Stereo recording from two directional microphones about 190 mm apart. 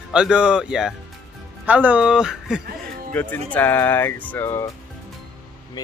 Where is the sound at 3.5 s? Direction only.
10° left (ahead or behind).